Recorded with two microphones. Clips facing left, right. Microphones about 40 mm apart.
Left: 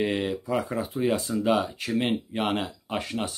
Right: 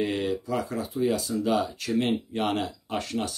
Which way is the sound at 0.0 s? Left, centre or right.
Centre.